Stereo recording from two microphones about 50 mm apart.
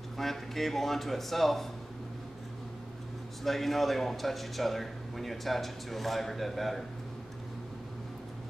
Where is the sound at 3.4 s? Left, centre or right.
Centre.